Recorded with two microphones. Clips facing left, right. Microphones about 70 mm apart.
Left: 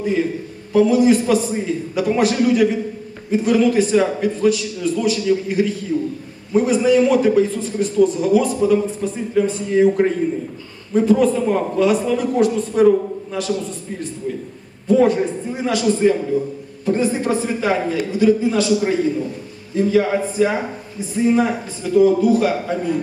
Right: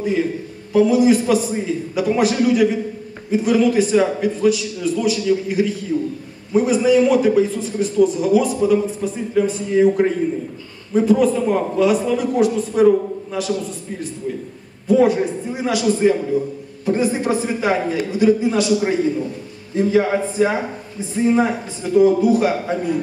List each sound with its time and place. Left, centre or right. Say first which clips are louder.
0.7 s a man's voice: even; centre
14.9 s a man's voice: even; centre
19.7 s a man's voice: even; right